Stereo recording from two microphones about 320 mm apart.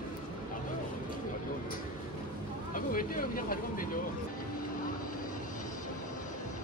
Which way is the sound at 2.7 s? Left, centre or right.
Left.